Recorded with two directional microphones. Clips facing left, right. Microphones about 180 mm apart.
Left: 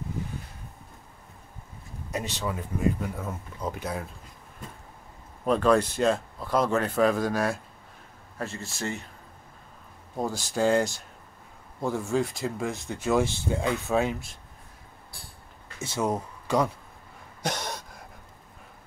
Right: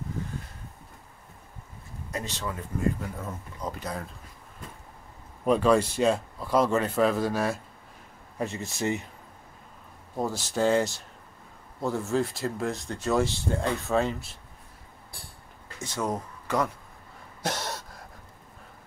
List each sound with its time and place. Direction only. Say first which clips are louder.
2.0 s speech: left 2 dB; 10° left (ahead or behind)
5.4 s speech: even; 5° right (ahead or behind)
8.4 s speech: right 3 dB; 20° right (ahead or behind)
8.6 s speech: right 4 dB; centre (ahead or behind)
10.1 s speech: even; 5° right (ahead or behind)
15.8 s speech: left 2 dB; 10° left (ahead or behind)
17.4 s a sound: even; 5° right (ahead or behind)